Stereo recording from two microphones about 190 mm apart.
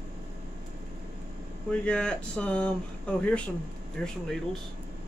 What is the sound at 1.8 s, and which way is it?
Speech, 5° left (ahead or behind).